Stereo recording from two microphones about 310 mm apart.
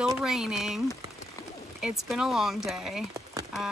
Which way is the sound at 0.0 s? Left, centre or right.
Centre.